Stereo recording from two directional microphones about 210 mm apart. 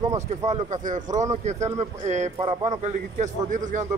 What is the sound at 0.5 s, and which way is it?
Speech, 35° right (ahead or behind).